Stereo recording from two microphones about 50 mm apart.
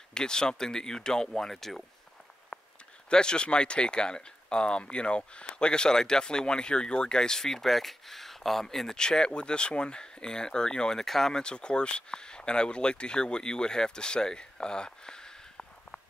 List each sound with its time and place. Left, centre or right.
0.1 s speech: centre
2.5 s a sound: centre
3.1 s speech: centre